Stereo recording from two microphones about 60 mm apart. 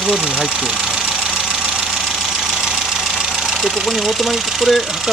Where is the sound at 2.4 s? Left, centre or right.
Centre.